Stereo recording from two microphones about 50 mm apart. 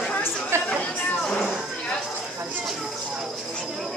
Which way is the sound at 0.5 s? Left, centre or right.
Right.